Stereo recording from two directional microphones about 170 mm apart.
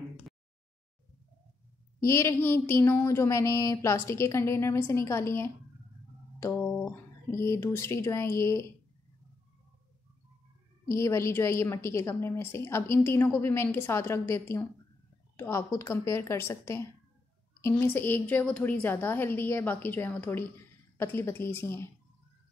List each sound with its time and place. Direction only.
2.0 s a woman's voice: 15° left (ahead or behind)
6.4 s music: 10° left (ahead or behind)
7.2 s a woman's voice: 15° left (ahead or behind)
10.9 s a woman's voice: 15° left (ahead or behind)